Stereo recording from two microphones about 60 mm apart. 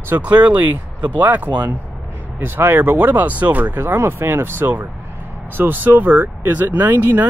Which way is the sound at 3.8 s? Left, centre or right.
Right.